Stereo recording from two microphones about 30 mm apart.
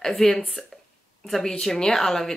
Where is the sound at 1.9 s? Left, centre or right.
Centre.